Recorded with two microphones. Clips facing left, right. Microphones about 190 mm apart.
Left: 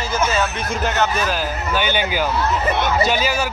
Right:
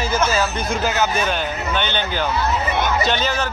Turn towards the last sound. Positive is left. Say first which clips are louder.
# left 2 dB
turn(degrees=10)  # may be behind; listen again after turning